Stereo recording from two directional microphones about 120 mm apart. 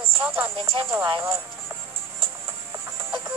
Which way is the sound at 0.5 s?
50° right (ahead or behind).